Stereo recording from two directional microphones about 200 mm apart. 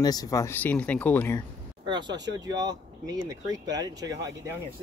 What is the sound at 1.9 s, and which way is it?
Speech, 20° right (ahead or behind).